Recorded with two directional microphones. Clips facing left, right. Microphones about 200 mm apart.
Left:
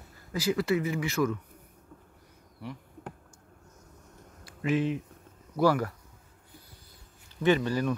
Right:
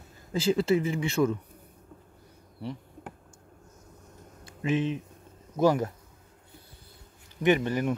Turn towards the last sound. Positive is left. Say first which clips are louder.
# right 1 dB
turn(degrees=-20)  # may be behind; listen again after turning